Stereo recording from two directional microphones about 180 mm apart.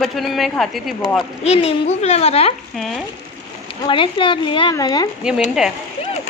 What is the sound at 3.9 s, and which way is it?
Speech, 30° left (ahead or behind).